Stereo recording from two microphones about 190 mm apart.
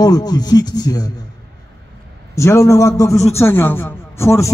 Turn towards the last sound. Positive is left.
turn(degrees=15)  # may be behind; listen again after turning